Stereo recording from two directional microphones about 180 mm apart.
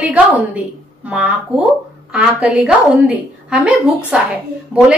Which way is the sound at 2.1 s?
5° right (ahead or behind).